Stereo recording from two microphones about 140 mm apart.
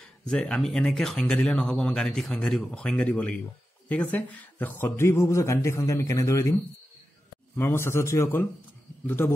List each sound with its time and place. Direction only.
0.0 s speech: 5° left (ahead or behind); by 6.5 s 25° left (ahead or behind)
7.5 s a man's voice: 15° left (ahead or behind)